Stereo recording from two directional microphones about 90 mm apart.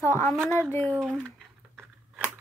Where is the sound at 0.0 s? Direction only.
35° left (ahead or behind).